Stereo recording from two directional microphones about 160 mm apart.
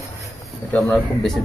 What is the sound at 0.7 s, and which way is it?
Speech, 10° left (ahead or behind).